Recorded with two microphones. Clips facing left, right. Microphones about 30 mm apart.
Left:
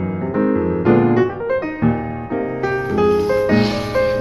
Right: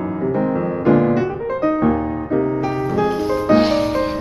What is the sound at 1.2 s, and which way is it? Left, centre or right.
Music, left.